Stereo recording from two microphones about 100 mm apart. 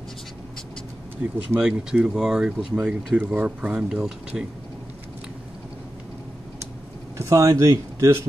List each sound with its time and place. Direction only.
1.6 s speech: 5° right (ahead or behind)
7.2 s speech: 30° right (ahead or behind)